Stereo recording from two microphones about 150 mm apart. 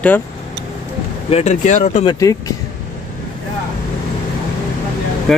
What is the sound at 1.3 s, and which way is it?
Speech, 50° left (ahead or behind).